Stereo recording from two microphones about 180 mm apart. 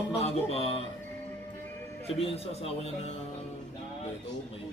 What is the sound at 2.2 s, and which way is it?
Speech, 35° left (ahead or behind).